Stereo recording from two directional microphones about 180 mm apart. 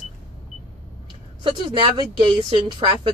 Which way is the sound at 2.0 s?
25° right (ahead or behind).